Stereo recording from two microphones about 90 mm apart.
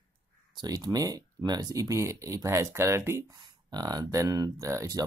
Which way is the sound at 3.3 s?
60° right (ahead or behind).